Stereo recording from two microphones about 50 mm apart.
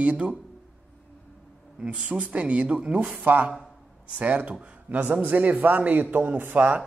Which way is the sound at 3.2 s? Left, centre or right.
Right.